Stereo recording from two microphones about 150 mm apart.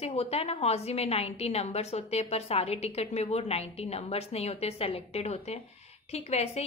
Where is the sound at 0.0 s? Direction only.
45° left (ahead or behind).